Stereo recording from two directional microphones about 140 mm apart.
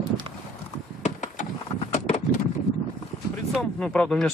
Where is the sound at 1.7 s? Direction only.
45° left (ahead or behind).